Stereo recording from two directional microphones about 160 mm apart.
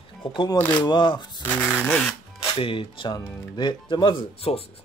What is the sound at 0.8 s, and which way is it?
Speech, 30° left (ahead or behind).